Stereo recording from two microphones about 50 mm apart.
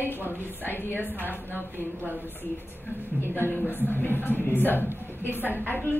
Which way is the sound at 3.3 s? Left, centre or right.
Left.